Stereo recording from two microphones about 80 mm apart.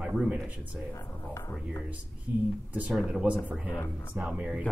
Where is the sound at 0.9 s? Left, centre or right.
Left.